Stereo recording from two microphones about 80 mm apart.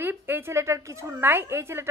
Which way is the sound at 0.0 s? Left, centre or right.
Right.